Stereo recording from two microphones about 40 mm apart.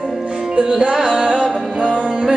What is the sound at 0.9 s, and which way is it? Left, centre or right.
Music, centre.